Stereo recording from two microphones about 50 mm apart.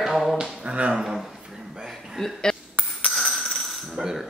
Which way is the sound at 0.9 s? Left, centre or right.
Centre.